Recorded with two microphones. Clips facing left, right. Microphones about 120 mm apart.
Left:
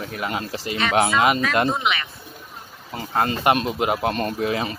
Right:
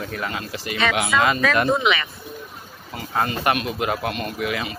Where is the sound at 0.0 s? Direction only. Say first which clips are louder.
Left 1 dB; 25° left (ahead or behind).